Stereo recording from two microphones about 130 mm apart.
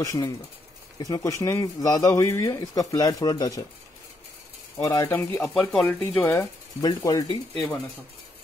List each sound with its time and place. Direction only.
0.0 s speech: 25° left (ahead or behind)
4.8 s speech: 25° left (ahead or behind)
5.4 s speech: 5° left (ahead or behind)
6.8 s speech: 30° left (ahead or behind)